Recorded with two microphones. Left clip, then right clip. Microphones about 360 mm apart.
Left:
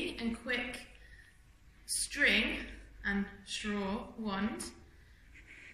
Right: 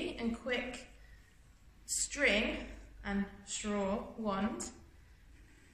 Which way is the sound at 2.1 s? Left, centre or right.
Centre.